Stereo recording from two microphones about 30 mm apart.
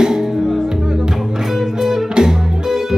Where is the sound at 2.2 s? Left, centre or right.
Centre.